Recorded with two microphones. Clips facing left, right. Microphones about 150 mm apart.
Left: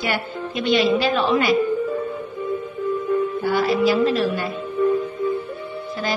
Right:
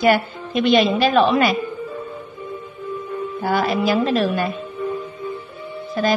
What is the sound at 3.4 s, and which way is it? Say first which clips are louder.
A woman's voice: right 4 dB; 50° right (ahead or behind).